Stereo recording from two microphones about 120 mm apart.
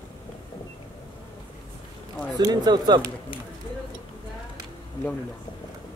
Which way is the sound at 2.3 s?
35° right (ahead or behind).